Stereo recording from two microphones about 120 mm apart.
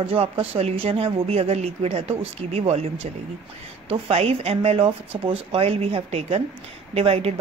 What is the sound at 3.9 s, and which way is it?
A woman's voice, 55° right (ahead or behind).